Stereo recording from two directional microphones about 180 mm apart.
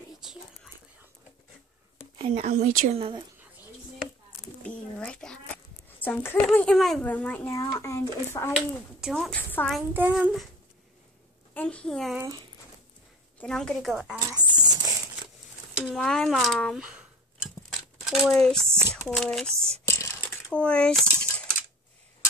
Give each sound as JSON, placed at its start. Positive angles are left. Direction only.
{"t": 2.1, "sound": "a woman's voice", "side_deg": -35}
{"t": 3.0, "sound": "a woman's voice", "side_deg": -30}
{"t": 4.6, "sound": "speech", "side_deg": 5}
{"t": 8.5, "sound": "a child's voice", "side_deg": 0}
{"t": 9.9, "sound": "a child's voice", "side_deg": -10}
{"t": 11.5, "sound": "a woman's voice", "side_deg": 5}
{"t": 13.4, "sound": "a child's voice", "side_deg": 5}
{"t": 15.7, "sound": "a child's voice", "side_deg": 0}
{"t": 18.7, "sound": "a child's voice", "side_deg": -15}
{"t": 19.0, "sound": "a child's voice", "side_deg": 5}
{"t": 19.9, "sound": "coin", "side_deg": 15}